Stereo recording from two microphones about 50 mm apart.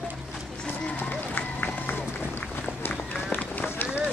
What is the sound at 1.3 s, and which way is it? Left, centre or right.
Music, left.